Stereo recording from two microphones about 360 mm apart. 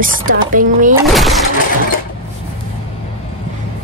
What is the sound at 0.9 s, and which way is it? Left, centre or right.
Speech, centre.